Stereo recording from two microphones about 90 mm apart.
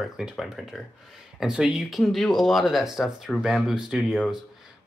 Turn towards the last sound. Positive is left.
turn(degrees=-5)  # may be behind; listen again after turning